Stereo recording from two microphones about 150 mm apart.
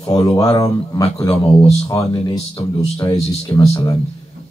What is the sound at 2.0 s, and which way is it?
Speech, 35° left (ahead or behind).